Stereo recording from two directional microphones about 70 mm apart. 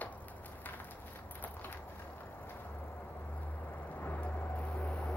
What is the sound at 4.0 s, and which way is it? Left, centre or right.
Vehicle, left.